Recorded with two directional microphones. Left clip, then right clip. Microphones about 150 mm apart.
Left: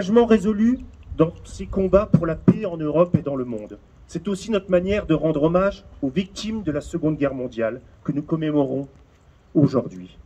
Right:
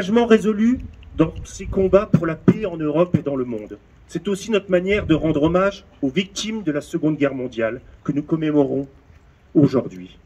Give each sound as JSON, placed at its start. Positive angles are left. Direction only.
{"t": 0.0, "sound": "speech", "side_deg": 35}
{"t": 3.3, "sound": "speech", "side_deg": 20}
{"t": 3.6, "sound": "speech", "side_deg": 30}
{"t": 9.6, "sound": "speech", "side_deg": 35}